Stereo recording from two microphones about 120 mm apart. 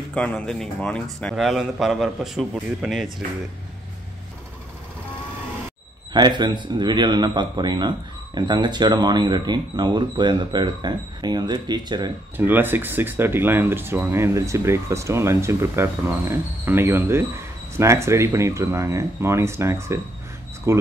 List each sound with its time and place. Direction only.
0.1 s a man's voice: 10° left (ahead or behind)
6.1 s speech: 40° right (ahead or behind)
12.4 s speech: 15° right (ahead or behind)